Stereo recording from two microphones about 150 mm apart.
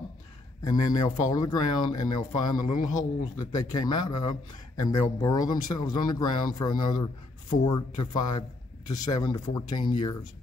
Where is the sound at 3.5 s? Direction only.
25° left (ahead or behind).